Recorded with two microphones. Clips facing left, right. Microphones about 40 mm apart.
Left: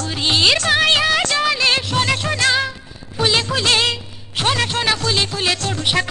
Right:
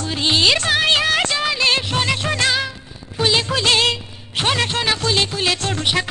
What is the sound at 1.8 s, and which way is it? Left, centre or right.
Music, centre.